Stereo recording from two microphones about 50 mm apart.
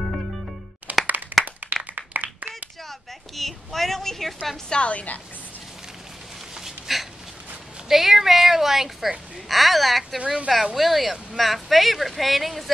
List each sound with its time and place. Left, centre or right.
0.9 s clapping: right
2.9 s a sound: centre
4.6 s a woman's voice: left
6.5 s a sound: centre
7.9 s speech: centre
10.1 s a woman's voice: centre
10.5 s speech: centre